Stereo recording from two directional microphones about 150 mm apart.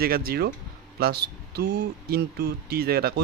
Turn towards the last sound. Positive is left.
turn(degrees=-90)